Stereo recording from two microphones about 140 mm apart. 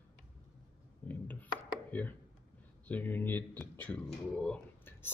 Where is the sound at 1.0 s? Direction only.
10° left (ahead or behind).